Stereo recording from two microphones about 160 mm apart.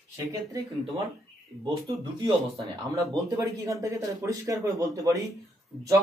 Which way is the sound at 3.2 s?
20° right (ahead or behind).